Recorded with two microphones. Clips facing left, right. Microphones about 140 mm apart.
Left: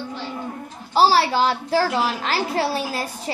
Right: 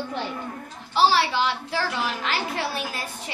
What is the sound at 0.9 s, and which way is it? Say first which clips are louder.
A woman's voice: left 4 dB; 40° left (ahead or behind).